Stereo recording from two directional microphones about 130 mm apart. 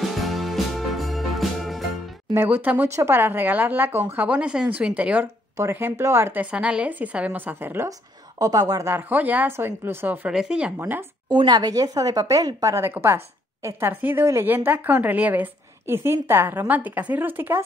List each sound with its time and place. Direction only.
0.2 s music: centre (ahead or behind)
2.3 s a woman's voice: 15° right (ahead or behind)
8.4 s a woman's voice: 30° right (ahead or behind); by 10.7 s 5° right (ahead or behind)
10.8 s a woman's voice: 15° right (ahead or behind)
11.2 s speech: 35° right (ahead or behind); by 17.6 s 15° right (ahead or behind)